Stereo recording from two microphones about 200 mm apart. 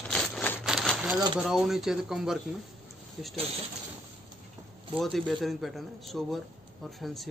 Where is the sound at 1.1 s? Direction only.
20° right (ahead or behind).